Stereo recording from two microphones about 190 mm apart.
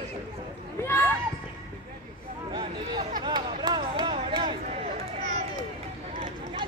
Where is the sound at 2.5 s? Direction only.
25° right (ahead or behind).